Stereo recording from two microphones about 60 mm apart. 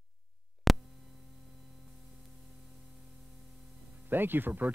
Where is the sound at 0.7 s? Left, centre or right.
Centre.